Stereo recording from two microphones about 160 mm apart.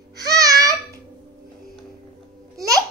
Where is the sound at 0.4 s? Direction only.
20° right (ahead or behind).